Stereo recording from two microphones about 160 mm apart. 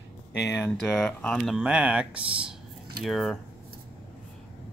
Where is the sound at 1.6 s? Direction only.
5° right (ahead or behind).